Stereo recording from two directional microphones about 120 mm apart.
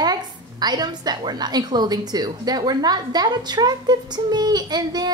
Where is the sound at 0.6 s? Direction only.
35° right (ahead or behind).